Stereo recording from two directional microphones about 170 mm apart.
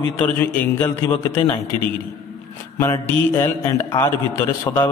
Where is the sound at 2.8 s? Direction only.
15° left (ahead or behind).